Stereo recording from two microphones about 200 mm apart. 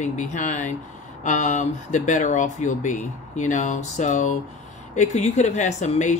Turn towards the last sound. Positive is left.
turn(degrees=35)  # may be behind; listen again after turning